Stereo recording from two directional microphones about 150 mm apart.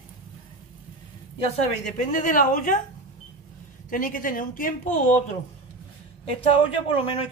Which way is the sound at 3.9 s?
65° left (ahead or behind).